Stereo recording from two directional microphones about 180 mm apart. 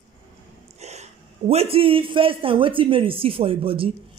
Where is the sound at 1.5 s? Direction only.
35° right (ahead or behind).